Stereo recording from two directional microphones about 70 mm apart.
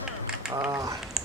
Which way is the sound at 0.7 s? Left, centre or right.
Right.